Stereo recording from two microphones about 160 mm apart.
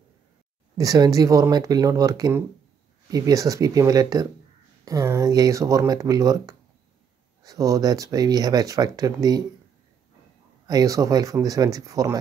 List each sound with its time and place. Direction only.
0.7 s speech: 25° right (ahead or behind)
10.7 s speech: 20° right (ahead or behind)